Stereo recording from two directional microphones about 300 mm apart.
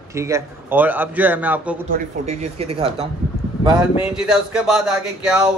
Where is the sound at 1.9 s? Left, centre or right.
Right.